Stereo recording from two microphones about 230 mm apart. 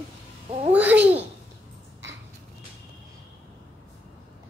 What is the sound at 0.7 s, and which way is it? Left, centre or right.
Babbling, centre.